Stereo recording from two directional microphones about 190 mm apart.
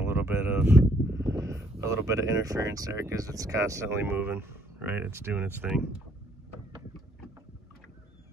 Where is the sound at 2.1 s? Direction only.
15° right (ahead or behind).